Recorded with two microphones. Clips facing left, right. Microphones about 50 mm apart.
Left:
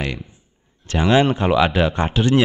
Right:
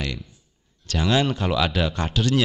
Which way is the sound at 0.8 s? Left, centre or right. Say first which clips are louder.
Left 6 dB; left.